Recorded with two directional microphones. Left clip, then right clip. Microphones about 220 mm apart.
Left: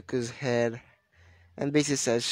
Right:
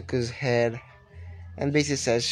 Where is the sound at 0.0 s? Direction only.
45° left (ahead or behind).